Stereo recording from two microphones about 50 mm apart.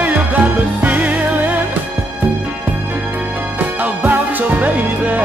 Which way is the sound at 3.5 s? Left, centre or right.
Right.